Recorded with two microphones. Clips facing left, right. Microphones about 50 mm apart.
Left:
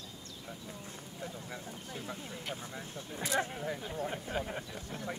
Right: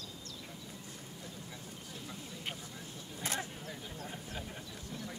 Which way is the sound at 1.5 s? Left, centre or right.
Left.